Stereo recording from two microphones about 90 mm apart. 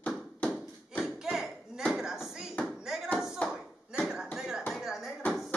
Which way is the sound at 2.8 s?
5° right (ahead or behind).